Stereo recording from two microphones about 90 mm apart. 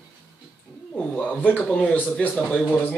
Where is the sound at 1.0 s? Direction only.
15° left (ahead or behind).